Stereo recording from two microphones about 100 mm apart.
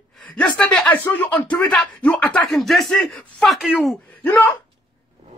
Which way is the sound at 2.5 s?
Centre (ahead or behind).